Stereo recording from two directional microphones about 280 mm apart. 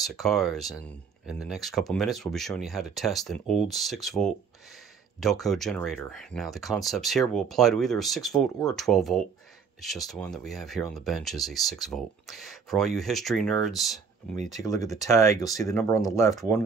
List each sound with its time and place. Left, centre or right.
0.0 s speech: centre
14.3 s speech: right
14.6 s speech: centre
15.7 s speech: centre